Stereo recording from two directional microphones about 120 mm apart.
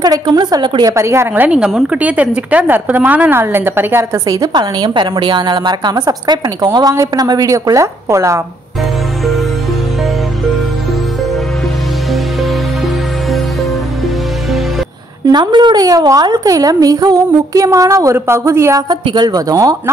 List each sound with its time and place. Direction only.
0.0 s a woman's voice: 35° right (ahead or behind)
0.9 s a woman's voice: 25° right (ahead or behind)
15.3 s a woman's voice: 40° right (ahead or behind)